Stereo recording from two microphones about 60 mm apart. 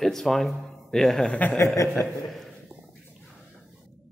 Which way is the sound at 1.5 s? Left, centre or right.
Left.